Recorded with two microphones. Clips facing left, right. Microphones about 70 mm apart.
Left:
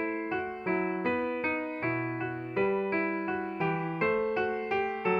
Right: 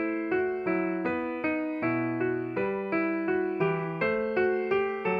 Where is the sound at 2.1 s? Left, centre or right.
Right.